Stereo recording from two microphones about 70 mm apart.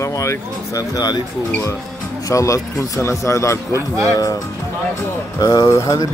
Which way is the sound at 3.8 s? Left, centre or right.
Right.